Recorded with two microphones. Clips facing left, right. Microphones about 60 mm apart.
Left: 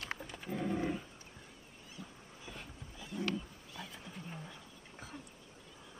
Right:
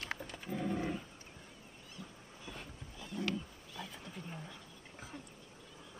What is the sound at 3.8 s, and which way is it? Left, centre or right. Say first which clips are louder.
Neigh: right 1 dB; centre.